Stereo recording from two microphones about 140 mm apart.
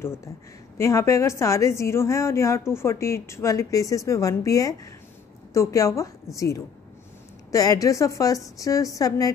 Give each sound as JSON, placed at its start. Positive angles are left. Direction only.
{"t": 0.0, "sound": "a woman's voice", "side_deg": 20}